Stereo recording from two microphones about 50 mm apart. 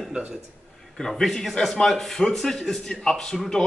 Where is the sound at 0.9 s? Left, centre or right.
Centre.